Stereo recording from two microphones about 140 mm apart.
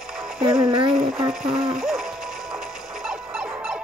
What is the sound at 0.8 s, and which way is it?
Music, 5° right (ahead or behind).